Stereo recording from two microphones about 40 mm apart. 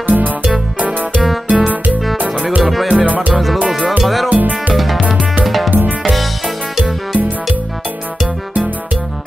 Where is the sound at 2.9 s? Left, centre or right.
Right.